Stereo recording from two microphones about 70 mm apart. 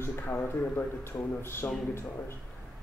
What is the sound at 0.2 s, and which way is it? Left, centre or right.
Speech, left.